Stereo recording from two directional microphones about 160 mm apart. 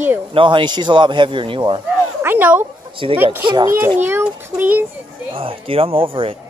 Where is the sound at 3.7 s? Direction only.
15° right (ahead or behind).